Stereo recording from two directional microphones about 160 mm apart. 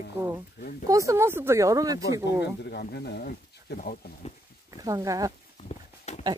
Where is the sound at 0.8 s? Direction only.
20° right (ahead or behind).